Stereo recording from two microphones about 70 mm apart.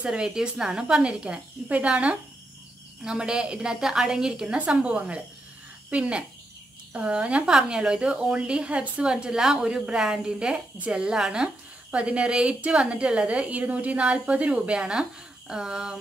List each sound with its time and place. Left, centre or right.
0.0 s a woman's voice: centre